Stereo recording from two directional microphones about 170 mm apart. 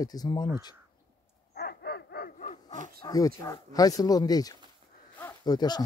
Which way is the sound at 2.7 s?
50° right (ahead or behind).